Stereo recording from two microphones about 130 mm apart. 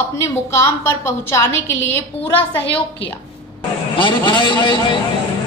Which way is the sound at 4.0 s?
35° left (ahead or behind).